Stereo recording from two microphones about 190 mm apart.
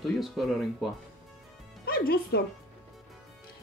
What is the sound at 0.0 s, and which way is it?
Speech, centre (ahead or behind).